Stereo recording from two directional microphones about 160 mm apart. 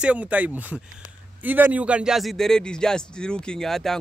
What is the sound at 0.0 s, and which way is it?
A man's voice, 10° right (ahead or behind).